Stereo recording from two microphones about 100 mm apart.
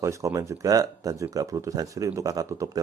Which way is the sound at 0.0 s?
30° right (ahead or behind).